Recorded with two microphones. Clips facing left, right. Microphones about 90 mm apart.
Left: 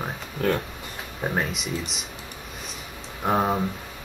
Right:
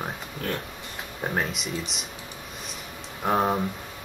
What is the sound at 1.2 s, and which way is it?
Speech, centre (ahead or behind).